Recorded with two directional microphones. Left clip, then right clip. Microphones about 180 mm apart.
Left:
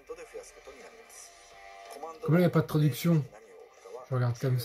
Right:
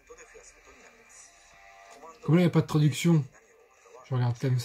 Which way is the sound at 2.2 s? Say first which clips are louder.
Right 1 dB; 5° right (ahead or behind).